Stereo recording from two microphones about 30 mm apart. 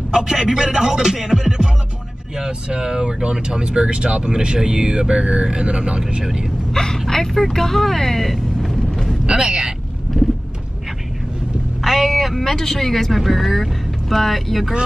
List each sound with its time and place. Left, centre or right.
0.1 s a sound: right
0.4 s speech: centre; by 6.2 s right
6.7 s speech: left
9.2 s speech: right
11.8 s a sound: centre
12.5 s speech: centre